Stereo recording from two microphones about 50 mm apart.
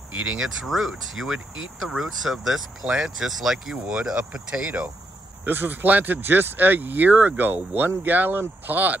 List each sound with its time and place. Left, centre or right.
0.4 s speech: centre
2.9 s speech: centre
3.3 s speech: centre; by 4.9 s right
5.4 s speech: right